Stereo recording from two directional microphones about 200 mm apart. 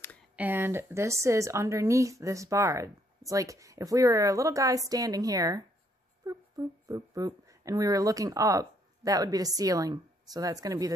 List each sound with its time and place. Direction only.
0.4 s a woman's voice: 10° right (ahead or behind)